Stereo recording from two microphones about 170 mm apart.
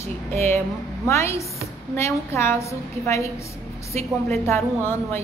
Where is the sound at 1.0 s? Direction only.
15° left (ahead or behind).